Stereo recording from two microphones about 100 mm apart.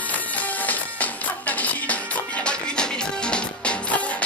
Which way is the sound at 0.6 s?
15° left (ahead or behind).